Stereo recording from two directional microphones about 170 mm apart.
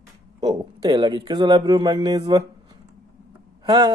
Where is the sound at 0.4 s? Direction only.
25° right (ahead or behind).